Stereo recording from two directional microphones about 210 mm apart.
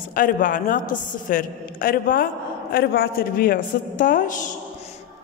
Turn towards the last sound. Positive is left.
turn(degrees=40)  # may be behind; listen again after turning